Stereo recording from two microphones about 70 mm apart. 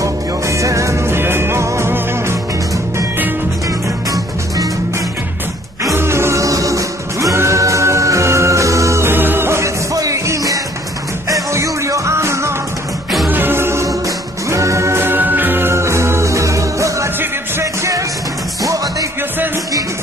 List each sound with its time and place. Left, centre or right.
0.0 s music: right
5.9 s music: right
9.1 s music: right
9.9 s music: right
13.3 s music: right
13.8 s music: right
18.6 s music: right